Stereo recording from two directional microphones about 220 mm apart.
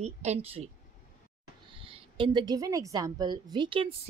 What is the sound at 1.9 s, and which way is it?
A woman's voice, 20° right (ahead or behind).